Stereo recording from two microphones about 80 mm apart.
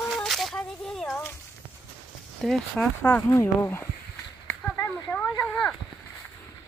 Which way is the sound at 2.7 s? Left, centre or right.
Left.